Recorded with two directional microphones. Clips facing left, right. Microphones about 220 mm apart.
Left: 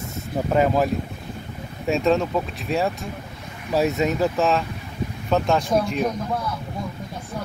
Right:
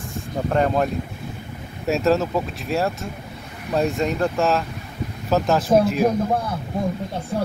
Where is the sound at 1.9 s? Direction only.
Centre (ahead or behind).